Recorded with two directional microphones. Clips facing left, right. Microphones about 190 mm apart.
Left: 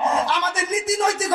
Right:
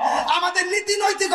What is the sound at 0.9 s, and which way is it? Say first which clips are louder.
Speech: right 1 dB; 55° left (ahead or behind).